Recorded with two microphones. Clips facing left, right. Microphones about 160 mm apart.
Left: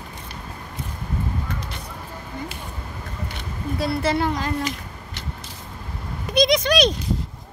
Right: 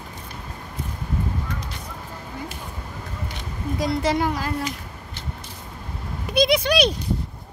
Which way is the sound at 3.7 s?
15° right (ahead or behind).